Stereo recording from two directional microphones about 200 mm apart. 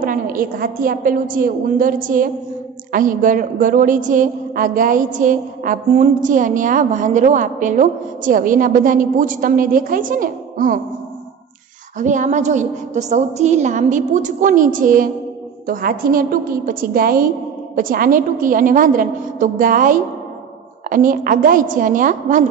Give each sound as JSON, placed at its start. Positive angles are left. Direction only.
{"t": 0.0, "sound": "a woman's voice", "side_deg": -45}
{"t": 12.0, "sound": "a woman's voice", "side_deg": -40}